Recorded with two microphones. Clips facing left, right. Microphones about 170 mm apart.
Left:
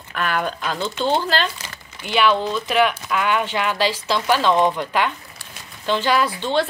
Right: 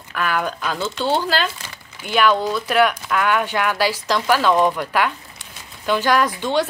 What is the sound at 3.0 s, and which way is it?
Speech, 10° left (ahead or behind).